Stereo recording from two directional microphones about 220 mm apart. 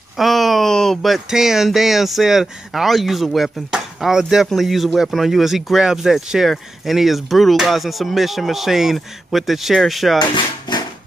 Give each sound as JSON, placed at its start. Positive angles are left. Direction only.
{"t": 0.2, "sound": "speech", "side_deg": 0}
{"t": 10.1, "sound": "drawer open or close", "side_deg": 20}